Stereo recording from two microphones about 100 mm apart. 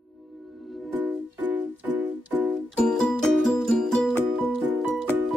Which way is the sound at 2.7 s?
5° left (ahead or behind).